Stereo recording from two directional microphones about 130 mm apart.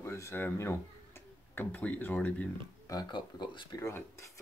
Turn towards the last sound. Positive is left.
turn(degrees=25)  # may be behind; listen again after turning